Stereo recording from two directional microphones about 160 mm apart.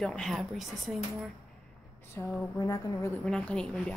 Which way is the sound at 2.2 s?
20° left (ahead or behind).